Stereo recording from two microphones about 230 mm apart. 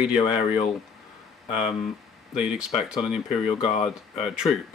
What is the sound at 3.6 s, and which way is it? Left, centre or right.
Speech, left.